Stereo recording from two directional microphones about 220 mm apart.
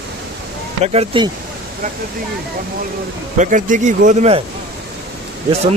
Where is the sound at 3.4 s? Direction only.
35° right (ahead or behind).